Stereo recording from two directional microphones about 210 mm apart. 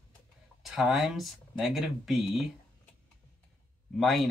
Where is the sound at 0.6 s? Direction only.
Centre (ahead or behind).